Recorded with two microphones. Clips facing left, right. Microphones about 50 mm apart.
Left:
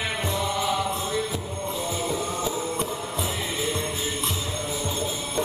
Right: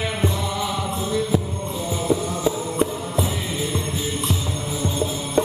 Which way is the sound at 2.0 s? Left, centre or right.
Right.